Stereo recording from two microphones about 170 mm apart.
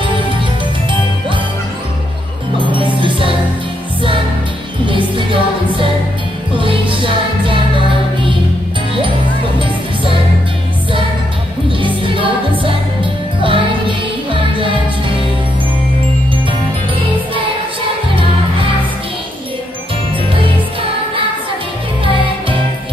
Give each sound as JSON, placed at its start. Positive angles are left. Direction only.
{"t": 2.5, "sound": "music", "side_deg": -30}
{"t": 4.8, "sound": "music", "side_deg": -30}
{"t": 11.8, "sound": "music", "side_deg": -30}